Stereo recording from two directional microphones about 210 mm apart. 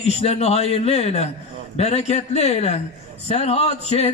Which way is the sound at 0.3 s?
30° left (ahead or behind).